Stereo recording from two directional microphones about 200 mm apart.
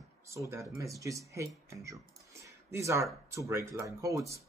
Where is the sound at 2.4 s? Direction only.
15° right (ahead or behind).